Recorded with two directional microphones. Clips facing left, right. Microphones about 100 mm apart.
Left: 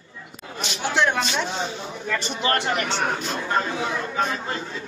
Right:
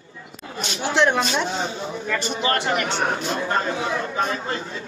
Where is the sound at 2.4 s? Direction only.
30° right (ahead or behind).